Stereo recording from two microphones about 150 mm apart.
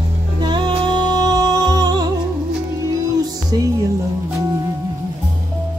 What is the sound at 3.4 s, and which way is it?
Music, 25° right (ahead or behind).